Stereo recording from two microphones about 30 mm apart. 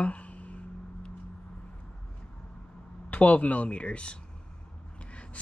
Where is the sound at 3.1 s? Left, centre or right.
Left.